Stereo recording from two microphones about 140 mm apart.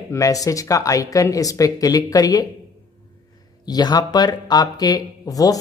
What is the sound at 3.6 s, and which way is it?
Speech, 30° left (ahead or behind).